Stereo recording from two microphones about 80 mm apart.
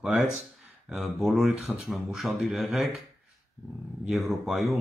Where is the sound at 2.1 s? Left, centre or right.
Centre.